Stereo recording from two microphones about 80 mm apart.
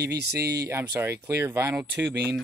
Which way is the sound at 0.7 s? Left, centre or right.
Right.